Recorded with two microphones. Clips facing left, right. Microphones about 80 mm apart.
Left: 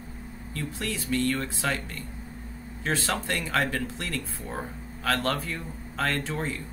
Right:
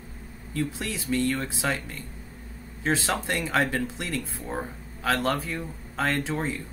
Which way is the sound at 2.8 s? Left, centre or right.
Centre.